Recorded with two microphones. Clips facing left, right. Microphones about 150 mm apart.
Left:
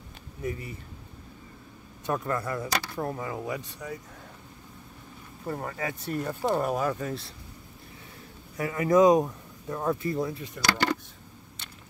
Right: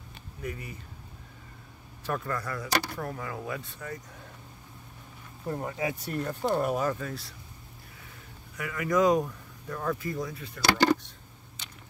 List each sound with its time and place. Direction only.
0.4 s speech: 25° left (ahead or behind)
2.0 s speech: 20° left (ahead or behind)
5.5 s speech: 10° right (ahead or behind)
6.0 s speech: centre (ahead or behind)
7.0 s speech: 25° left (ahead or behind)
8.5 s speech: 30° left (ahead or behind)